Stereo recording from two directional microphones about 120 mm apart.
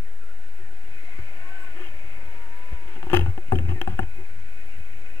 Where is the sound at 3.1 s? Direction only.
20° left (ahead or behind).